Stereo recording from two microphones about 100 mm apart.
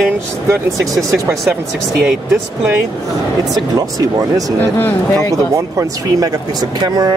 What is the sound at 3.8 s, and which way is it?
Speech, 35° right (ahead or behind).